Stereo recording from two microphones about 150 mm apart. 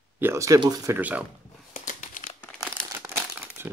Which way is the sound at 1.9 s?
60° left (ahead or behind).